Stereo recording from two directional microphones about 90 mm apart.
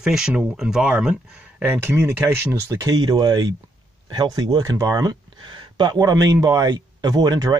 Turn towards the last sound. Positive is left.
turn(degrees=-50)  # may be behind; listen again after turning